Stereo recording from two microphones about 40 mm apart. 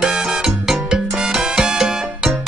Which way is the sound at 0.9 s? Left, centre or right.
Centre.